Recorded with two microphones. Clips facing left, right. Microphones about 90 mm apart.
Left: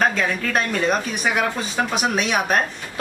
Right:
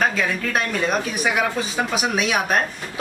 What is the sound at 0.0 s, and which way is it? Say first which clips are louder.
Speech: left 1 dB; centre (ahead or behind).